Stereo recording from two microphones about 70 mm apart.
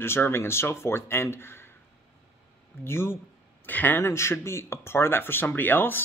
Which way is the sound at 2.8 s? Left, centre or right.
Left.